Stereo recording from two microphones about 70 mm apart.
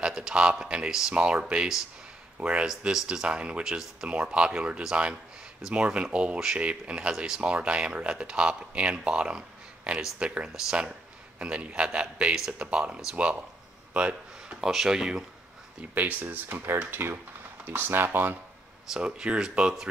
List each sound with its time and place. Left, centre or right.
0.0 s speech: centre
14.6 s speech: centre
15.9 s speech: right
18.9 s speech: centre